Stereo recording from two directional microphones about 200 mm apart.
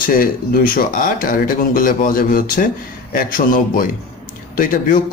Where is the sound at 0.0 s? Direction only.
45° left (ahead or behind).